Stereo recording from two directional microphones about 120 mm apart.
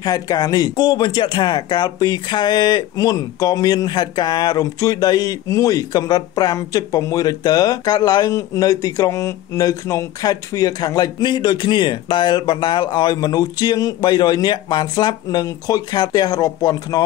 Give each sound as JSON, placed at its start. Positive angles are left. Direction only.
{"t": 0.0, "sound": "speech", "side_deg": 30}